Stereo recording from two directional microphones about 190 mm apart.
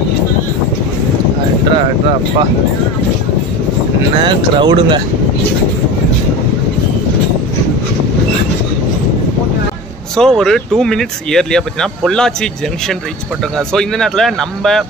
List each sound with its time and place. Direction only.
4.2 s speech: 25° right (ahead or behind)
10.1 s speech: 5° left (ahead or behind)